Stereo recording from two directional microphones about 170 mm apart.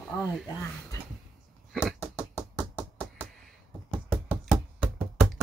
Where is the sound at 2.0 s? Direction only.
15° left (ahead or behind).